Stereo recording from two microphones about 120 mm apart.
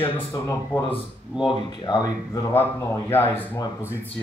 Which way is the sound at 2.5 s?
15° left (ahead or behind).